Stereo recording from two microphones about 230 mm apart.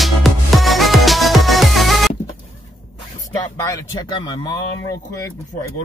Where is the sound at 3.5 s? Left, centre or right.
Centre.